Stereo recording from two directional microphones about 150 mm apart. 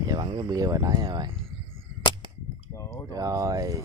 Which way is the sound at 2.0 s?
30° left (ahead or behind).